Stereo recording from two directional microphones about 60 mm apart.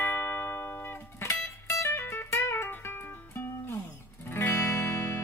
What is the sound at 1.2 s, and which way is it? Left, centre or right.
Music, left.